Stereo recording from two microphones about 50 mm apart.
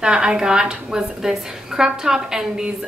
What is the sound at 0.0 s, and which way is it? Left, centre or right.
A woman's voice, centre.